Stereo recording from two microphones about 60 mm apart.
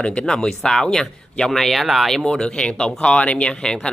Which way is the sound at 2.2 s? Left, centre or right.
Centre.